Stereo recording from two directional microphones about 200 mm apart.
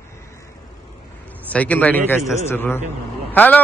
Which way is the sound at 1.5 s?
5° left (ahead or behind).